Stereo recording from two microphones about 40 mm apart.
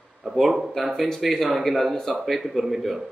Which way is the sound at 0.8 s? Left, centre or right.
Centre.